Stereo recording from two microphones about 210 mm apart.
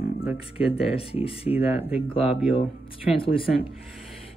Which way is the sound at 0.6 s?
25° left (ahead or behind).